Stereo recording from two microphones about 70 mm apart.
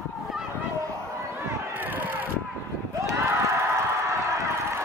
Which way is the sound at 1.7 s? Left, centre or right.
Right.